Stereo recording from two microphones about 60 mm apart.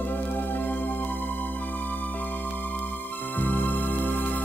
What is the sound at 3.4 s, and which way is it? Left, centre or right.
Music, left.